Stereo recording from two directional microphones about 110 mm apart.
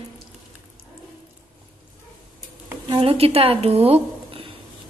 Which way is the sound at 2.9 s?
55° right (ahead or behind).